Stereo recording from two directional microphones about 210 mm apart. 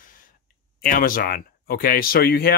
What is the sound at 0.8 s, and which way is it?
Speech, 40° left (ahead or behind).